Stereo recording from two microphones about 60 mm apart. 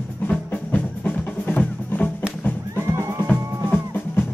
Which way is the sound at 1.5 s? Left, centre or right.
Left.